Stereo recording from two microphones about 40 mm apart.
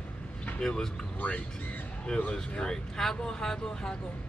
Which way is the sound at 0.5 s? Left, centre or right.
Left.